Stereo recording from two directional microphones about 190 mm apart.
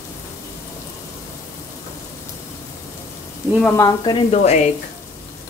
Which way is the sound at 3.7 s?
20° left (ahead or behind).